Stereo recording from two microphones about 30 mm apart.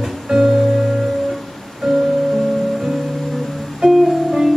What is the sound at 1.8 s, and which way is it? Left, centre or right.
Music, centre.